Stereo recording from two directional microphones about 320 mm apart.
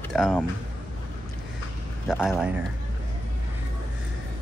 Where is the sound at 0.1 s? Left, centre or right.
Centre.